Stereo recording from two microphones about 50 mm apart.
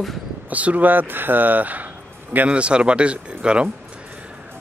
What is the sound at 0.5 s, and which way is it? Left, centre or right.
Speech, right.